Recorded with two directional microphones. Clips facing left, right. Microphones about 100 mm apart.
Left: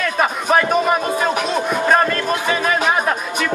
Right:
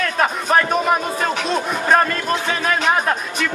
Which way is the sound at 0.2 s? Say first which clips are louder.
Left 1 dB; 5° left (ahead or behind).